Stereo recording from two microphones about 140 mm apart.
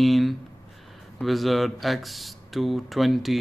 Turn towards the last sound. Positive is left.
turn(degrees=0)  # may be behind; listen again after turning